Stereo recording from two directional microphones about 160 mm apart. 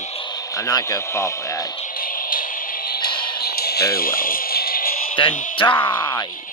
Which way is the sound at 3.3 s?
75° left (ahead or behind).